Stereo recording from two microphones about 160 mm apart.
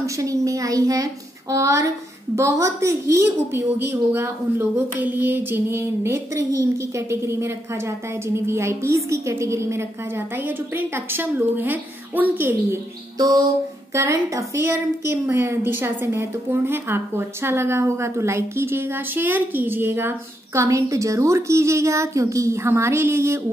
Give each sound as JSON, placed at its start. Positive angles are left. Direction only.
{"t": 0.0, "sound": "a woman's voice", "side_deg": -20}